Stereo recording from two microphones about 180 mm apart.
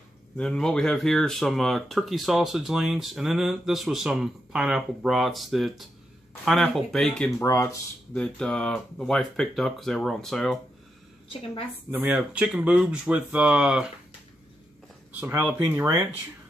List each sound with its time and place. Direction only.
0.4 s speech: 5° left (ahead or behind)
7.3 s speech: 15° left (ahead or behind)
8.1 s speech: 5° left (ahead or behind)
11.9 s speech: 10° right (ahead or behind)
15.1 s speech: 10° right (ahead or behind)